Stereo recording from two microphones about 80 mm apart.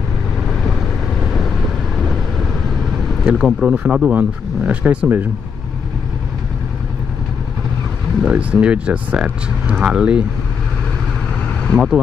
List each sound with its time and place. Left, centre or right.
3.3 s speech: centre; by 5.3 s right
8.2 s speech: centre
11.7 s speech: centre